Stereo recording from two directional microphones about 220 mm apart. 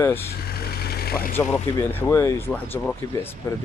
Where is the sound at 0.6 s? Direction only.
45° left (ahead or behind).